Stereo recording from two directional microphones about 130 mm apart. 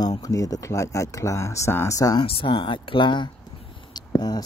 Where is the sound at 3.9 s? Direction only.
30° left (ahead or behind).